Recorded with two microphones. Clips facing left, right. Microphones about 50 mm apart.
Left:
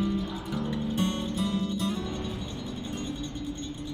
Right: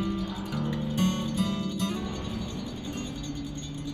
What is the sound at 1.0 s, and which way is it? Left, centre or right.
Music, centre.